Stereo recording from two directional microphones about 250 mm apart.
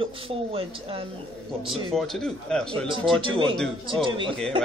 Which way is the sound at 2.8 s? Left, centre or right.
Centre.